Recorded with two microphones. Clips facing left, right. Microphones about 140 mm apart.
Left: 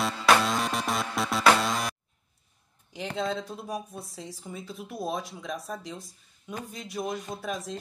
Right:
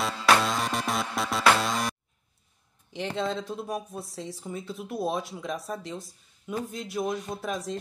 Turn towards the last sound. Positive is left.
turn(degrees=0)  # may be behind; listen again after turning